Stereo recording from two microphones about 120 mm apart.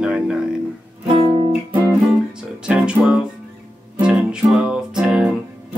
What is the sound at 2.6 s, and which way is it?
Music, 5° right (ahead or behind).